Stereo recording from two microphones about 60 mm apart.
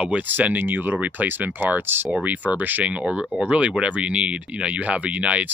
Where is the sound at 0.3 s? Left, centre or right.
Right.